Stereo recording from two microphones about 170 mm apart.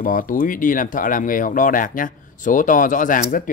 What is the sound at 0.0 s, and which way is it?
Speech, 50° left (ahead or behind).